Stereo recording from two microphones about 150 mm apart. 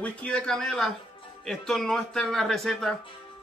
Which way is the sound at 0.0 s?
5° left (ahead or behind).